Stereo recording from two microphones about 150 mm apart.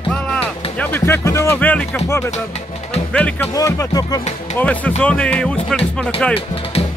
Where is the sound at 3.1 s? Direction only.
10° left (ahead or behind).